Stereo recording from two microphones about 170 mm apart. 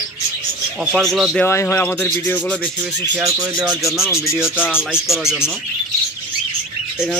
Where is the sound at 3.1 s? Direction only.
15° right (ahead or behind).